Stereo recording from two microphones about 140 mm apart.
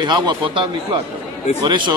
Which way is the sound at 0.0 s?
30° right (ahead or behind).